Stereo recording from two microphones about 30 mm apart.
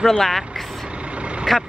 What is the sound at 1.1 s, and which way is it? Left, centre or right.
Vehicle, right.